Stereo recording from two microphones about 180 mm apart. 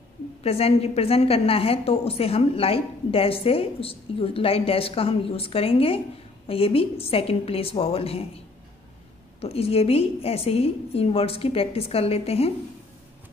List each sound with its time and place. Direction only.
0.4 s a woman's voice: 35° left (ahead or behind)
9.4 s a woman's voice: 35° left (ahead or behind)